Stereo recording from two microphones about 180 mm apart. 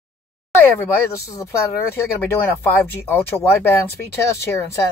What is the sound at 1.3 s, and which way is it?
Speech, 15° left (ahead or behind).